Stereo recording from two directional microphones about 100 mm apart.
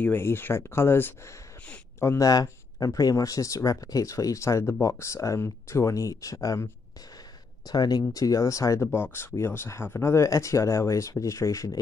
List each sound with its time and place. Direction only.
0.0 s speech: 20° left (ahead or behind)
7.6 s speech: 45° left (ahead or behind)
8.8 s speech: 20° left (ahead or behind)